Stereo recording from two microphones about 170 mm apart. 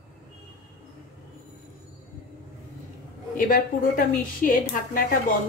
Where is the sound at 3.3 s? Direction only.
55° left (ahead or behind).